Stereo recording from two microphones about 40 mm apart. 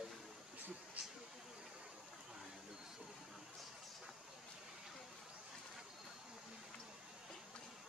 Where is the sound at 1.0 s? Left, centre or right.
Right.